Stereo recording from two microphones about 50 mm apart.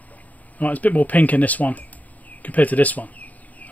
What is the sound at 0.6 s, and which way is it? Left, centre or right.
Speech, left.